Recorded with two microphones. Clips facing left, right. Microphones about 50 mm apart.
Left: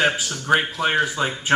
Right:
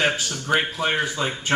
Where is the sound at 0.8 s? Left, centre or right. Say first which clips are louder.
Left 3 dB; centre.